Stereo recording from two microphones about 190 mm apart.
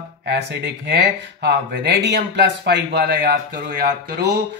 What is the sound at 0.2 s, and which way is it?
Speech, 65° right (ahead or behind).